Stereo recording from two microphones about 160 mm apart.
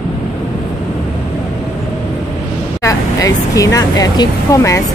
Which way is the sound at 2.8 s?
20° left (ahead or behind).